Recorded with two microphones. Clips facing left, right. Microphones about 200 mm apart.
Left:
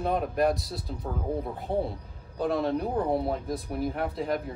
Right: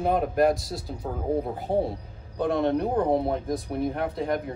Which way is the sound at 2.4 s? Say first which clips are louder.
Right 3 dB; centre (ahead or behind).